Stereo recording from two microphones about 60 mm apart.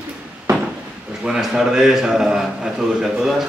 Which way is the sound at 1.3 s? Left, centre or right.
Centre.